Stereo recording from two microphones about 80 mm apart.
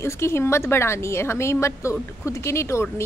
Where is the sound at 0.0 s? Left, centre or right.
Left.